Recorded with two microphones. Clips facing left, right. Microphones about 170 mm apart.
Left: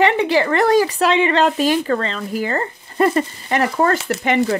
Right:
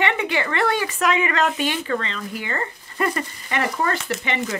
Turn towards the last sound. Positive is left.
turn(degrees=35)  # may be behind; listen again after turning